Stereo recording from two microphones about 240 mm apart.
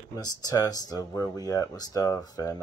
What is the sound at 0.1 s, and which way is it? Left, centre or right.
Speech, centre.